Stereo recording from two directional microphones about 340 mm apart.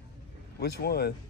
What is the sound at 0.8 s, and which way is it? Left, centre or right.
Speech, left.